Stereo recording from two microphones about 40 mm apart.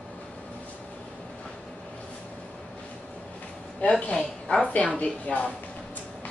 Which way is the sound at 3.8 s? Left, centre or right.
Left.